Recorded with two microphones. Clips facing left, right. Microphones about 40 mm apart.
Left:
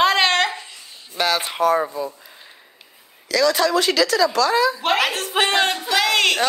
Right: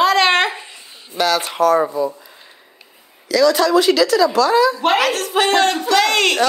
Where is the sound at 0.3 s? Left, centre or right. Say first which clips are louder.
Right 3 dB; right.